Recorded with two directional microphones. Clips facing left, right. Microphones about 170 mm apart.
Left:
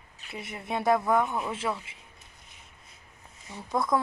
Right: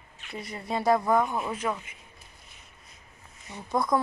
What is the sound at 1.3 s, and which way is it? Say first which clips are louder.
Speech: right 1 dB; 15° right (ahead or behind).